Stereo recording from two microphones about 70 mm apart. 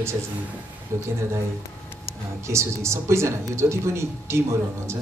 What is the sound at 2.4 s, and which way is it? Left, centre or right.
Speech, right.